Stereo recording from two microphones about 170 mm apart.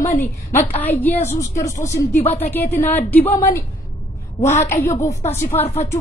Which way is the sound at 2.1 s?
40° left (ahead or behind).